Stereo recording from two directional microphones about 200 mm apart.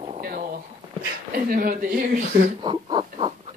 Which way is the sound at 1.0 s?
45° right (ahead or behind).